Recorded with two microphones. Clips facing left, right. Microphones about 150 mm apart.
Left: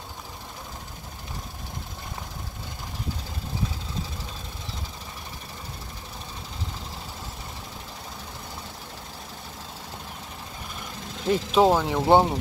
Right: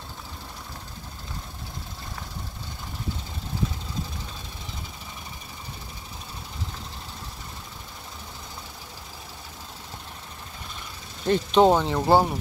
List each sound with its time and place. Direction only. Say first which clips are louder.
11.2 s speech: right 1 dB; 5° left (ahead or behind)
12.1 s speech: left 2 dB; 20° left (ahead or behind)